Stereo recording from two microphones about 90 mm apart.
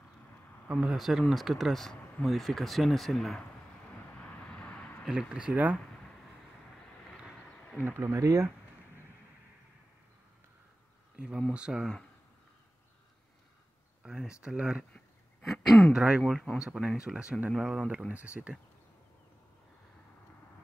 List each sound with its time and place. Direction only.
0.7 s speech: 10° right (ahead or behind)
4.2 s vehicle: 15° left (ahead or behind)
5.3 s speech: 15° right (ahead or behind)
7.8 s speech: 30° right (ahead or behind)
11.1 s speech: 10° right (ahead or behind)
14.0 s speech: 5° right (ahead or behind)
15.4 s speech: centre (ahead or behind)
15.9 s speech: 10° right (ahead or behind)